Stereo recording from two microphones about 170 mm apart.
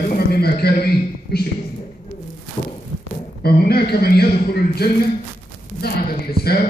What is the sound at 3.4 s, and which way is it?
A man's voice, 65° left (ahead or behind).